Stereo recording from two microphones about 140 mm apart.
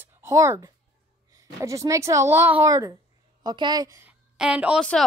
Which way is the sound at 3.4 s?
30° right (ahead or behind).